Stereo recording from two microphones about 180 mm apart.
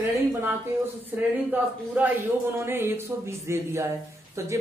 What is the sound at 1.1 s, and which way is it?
Speech, 10° right (ahead or behind).